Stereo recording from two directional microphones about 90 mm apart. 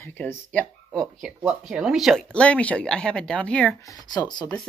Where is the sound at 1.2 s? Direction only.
5° right (ahead or behind).